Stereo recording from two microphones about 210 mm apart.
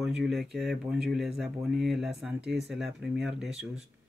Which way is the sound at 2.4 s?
55° right (ahead or behind).